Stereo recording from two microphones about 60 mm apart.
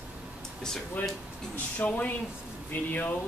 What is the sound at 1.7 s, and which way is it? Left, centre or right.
Speech, left.